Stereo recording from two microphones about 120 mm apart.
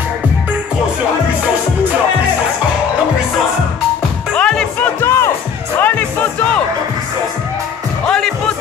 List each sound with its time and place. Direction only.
4.4 s music: 5° left (ahead or behind)
5.0 s music: 20° left (ahead or behind)
8.1 s music: 5° left (ahead or behind)